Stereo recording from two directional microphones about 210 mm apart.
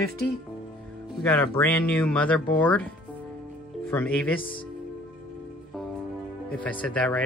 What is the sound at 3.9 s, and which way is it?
Speech, 5° left (ahead or behind).